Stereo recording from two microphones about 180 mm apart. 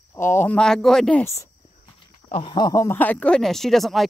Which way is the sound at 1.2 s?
15° left (ahead or behind).